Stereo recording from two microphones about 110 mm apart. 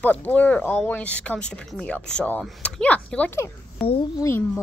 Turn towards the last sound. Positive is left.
turn(degrees=25)  # may be behind; listen again after turning